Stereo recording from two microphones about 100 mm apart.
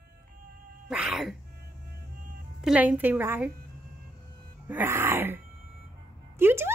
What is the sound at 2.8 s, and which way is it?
Speech, 15° right (ahead or behind).